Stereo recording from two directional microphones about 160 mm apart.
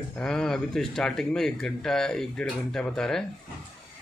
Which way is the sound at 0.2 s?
5° left (ahead or behind).